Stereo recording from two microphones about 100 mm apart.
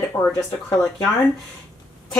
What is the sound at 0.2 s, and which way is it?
Speech, 25° left (ahead or behind).